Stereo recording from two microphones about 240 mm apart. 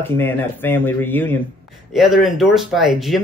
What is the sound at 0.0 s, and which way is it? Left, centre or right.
Speech, centre.